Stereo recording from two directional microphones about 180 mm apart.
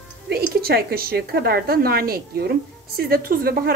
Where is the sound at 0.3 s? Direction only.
60° right (ahead or behind).